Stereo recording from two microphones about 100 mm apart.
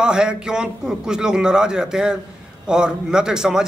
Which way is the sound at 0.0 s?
10° right (ahead or behind).